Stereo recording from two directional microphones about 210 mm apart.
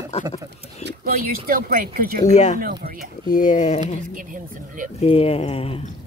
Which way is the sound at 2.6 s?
45° right (ahead or behind).